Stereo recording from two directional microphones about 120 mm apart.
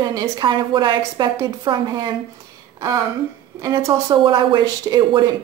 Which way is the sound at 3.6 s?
25° right (ahead or behind).